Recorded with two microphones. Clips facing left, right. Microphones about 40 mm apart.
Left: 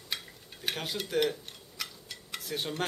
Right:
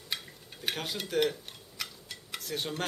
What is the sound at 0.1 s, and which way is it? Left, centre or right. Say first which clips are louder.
Cutlery: even; centre.